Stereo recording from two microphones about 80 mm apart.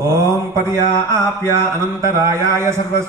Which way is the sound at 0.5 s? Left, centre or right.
Right.